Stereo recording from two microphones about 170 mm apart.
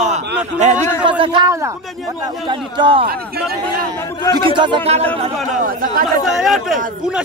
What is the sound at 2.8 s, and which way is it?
Speech, 30° right (ahead or behind).